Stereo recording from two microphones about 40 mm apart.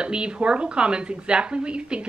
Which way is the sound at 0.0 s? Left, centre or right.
Right.